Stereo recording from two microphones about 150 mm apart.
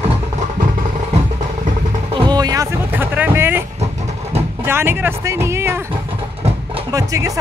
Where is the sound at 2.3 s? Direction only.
25° right (ahead or behind).